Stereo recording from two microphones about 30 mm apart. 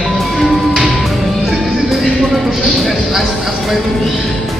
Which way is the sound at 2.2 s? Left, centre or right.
Centre.